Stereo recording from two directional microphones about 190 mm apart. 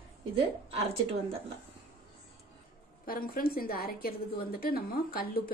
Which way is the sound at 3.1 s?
50° left (ahead or behind).